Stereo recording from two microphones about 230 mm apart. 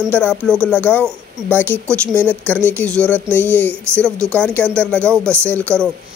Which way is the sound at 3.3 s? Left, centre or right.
Centre.